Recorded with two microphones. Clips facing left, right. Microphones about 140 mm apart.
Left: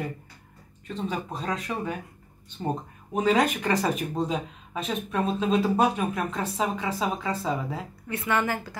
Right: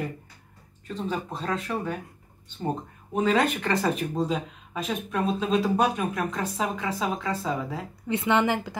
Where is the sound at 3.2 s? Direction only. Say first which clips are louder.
Left 1 dB; centre (ahead or behind).